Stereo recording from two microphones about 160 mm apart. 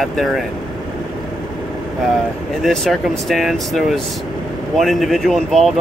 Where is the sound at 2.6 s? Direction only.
Centre (ahead or behind).